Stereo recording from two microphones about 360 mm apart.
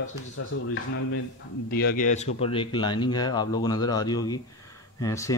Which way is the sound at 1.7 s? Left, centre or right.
Left.